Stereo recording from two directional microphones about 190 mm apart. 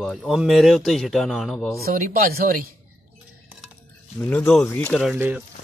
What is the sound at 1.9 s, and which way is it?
Speech, 50° right (ahead or behind).